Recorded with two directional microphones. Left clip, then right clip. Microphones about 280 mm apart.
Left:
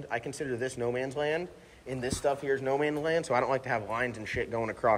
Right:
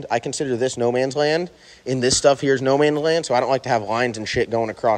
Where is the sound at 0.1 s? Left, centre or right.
Centre.